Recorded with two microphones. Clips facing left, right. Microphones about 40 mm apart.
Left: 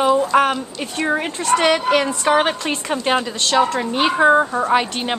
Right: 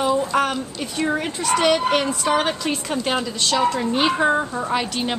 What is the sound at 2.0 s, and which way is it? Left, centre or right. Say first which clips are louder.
A woman's voice: left 3 dB; left.